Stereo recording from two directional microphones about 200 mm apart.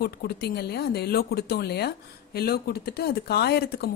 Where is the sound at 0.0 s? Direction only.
55° left (ahead or behind).